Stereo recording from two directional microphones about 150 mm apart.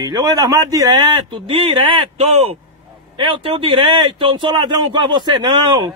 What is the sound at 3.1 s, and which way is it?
Speech, 30° right (ahead or behind).